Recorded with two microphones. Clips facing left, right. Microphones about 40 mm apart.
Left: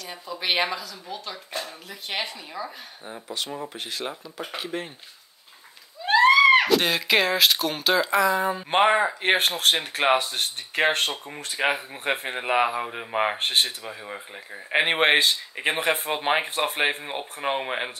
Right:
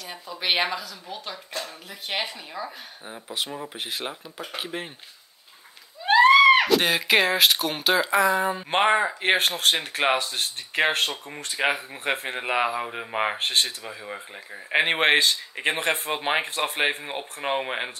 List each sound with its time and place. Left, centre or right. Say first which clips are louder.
0.0 s speech: even; centre
3.7 s speech: even; centre
6.0 s speech: right 1 dB; centre